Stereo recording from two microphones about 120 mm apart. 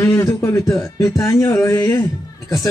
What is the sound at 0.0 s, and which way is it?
Speech, 25° left (ahead or behind).